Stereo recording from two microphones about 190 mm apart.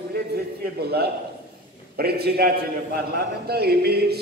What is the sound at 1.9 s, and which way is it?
A man's voice, 55° right (ahead or behind).